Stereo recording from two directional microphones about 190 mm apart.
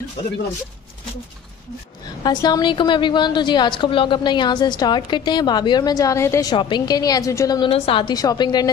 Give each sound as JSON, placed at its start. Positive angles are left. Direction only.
{"t": 2.2, "sound": "a woman's voice", "side_deg": 20}